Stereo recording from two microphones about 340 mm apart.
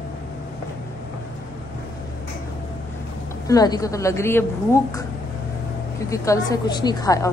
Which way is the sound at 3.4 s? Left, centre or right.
Centre.